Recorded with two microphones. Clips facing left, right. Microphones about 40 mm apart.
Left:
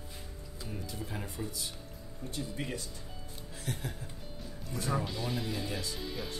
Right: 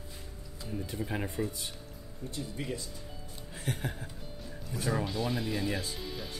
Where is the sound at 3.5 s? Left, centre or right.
Right.